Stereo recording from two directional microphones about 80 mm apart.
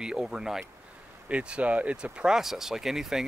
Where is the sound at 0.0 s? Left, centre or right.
Centre.